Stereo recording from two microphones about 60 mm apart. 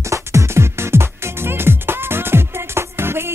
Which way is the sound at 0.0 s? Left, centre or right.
Right.